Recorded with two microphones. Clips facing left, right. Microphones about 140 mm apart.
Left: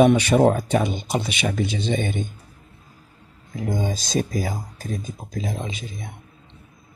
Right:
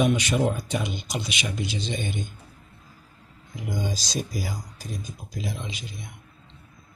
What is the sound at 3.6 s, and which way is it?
Speech, 55° left (ahead or behind).